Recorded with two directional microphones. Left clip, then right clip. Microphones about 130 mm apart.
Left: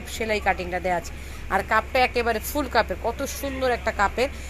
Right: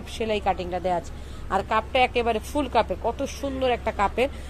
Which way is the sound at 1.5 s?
Centre (ahead or behind).